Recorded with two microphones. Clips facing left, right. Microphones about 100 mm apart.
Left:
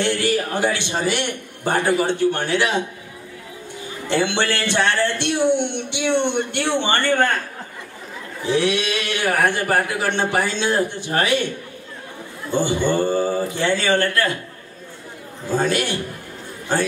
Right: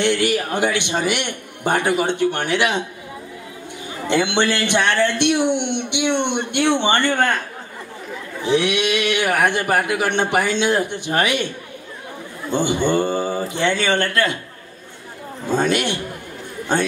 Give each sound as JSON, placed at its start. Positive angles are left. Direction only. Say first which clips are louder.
{"t": 0.0, "sound": "speech", "louder": "right 2 dB", "side_deg": -20}
{"t": 4.1, "sound": "speech", "louder": "right 2 dB", "side_deg": -20}
{"t": 8.5, "sound": "speech", "louder": "right 1 dB", "side_deg": -20}
{"t": 12.4, "sound": "speech", "louder": "right 1 dB", "side_deg": -20}
{"t": 15.4, "sound": "speech", "louder": "right 1 dB", "side_deg": -20}